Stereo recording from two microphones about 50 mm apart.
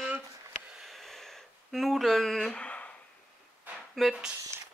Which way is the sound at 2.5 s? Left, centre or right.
Left.